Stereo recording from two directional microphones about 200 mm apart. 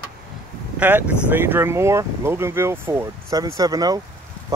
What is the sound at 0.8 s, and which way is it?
Speech, 10° right (ahead or behind).